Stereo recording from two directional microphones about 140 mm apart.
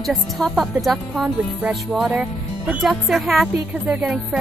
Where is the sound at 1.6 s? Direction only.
5° right (ahead or behind).